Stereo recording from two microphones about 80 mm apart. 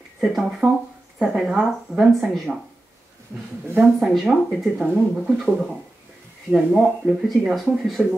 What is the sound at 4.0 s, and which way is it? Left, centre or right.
Speech, centre.